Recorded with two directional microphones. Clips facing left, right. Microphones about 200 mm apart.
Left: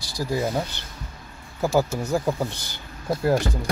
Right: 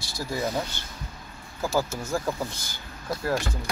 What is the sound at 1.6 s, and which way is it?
Speech, 20° left (ahead or behind).